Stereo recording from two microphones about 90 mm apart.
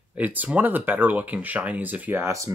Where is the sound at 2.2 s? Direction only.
35° right (ahead or behind).